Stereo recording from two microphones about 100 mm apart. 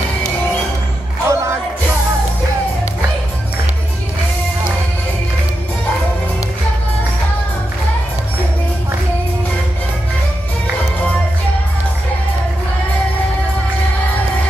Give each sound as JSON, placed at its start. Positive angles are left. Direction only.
{"t": 1.2, "sound": "music", "side_deg": -30}